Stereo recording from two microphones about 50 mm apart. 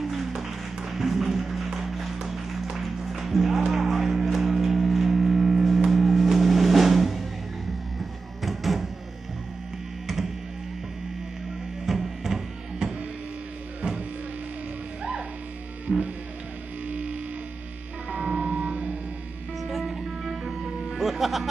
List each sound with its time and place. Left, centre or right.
0.0 s music: centre
8.4 s music: centre
11.8 s music: centre
15.9 s music: centre
16.8 s music: right
19.6 s music: centre
21.0 s music: centre